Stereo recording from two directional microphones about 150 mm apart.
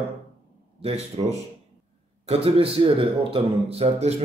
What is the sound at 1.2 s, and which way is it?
A man's voice, 35° right (ahead or behind).